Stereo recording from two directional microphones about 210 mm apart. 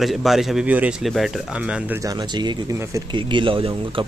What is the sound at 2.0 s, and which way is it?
Speech, 20° right (ahead or behind).